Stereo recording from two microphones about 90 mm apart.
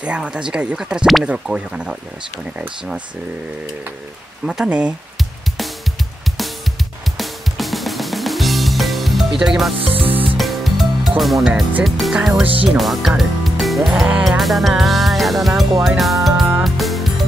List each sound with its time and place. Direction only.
0.0 s speech: 10° right (ahead or behind)
4.5 s speech: 10° right (ahead or behind)
7.2 s music: centre (ahead or behind)
9.8 s speech: 90° right
10.3 s music: centre (ahead or behind)
13.2 s speech: centre (ahead or behind)
14.2 s music: centre (ahead or behind)